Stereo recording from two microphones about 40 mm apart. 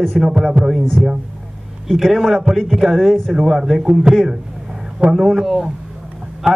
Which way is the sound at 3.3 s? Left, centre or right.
Centre.